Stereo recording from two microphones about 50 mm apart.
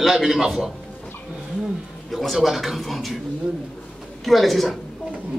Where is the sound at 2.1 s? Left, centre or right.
Centre.